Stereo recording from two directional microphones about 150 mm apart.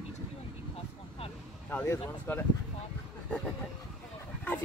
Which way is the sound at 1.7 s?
15° left (ahead or behind).